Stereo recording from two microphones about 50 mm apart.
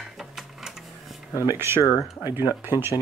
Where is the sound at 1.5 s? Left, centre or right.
Right.